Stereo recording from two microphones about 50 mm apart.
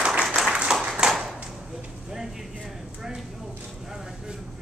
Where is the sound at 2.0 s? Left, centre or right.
Centre.